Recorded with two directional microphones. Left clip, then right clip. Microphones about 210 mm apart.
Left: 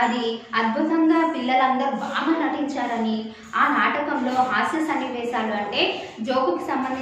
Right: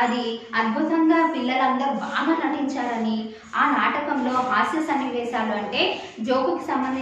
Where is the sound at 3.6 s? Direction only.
Centre (ahead or behind).